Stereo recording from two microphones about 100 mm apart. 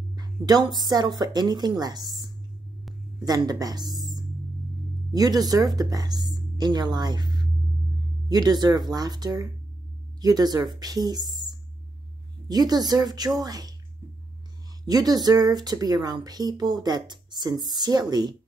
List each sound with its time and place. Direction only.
0.1 s a woman's voice: 40° right (ahead or behind)
3.3 s a woman's voice: 40° right (ahead or behind)
12.4 s speech: 40° right (ahead or behind)
14.9 s a woman's voice: 40° right (ahead or behind)